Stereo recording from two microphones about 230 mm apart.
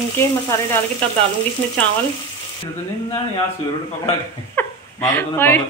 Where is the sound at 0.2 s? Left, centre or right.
Centre.